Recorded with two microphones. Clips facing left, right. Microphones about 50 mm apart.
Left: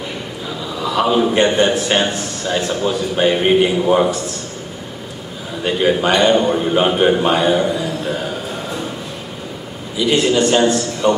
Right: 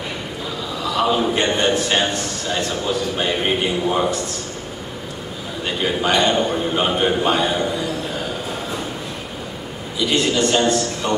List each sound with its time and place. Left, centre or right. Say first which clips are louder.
0.8 s a man's voice: left 3 dB; centre
5.7 s a man's voice: left 5 dB; centre
9.9 s a man's voice: left 4 dB; centre